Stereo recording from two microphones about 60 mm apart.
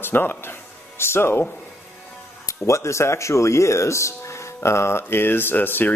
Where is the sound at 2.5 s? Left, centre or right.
Left.